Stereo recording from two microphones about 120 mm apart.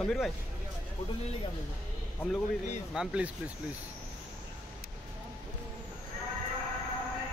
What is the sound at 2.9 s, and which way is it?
Speech, 5° right (ahead or behind).